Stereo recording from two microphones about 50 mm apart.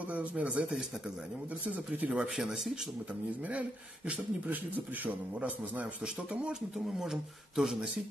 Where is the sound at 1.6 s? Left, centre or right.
Right.